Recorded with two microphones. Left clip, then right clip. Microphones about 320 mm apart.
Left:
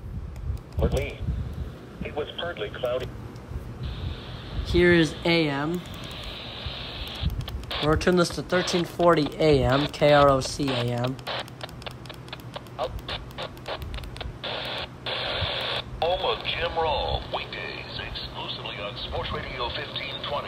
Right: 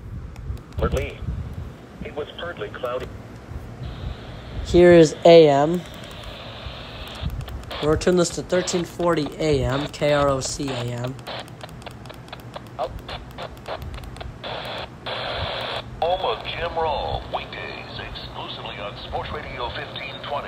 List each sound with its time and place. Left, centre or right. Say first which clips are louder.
0.7 s speech: right 3 dB; centre
4.7 s speech: right 8 dB; centre
6.6 s a sound: left 1 dB; centre